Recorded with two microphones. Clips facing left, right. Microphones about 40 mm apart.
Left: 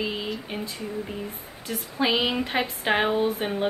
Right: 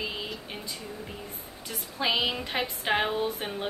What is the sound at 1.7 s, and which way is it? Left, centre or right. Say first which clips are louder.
A woman's voice: left 4 dB; centre.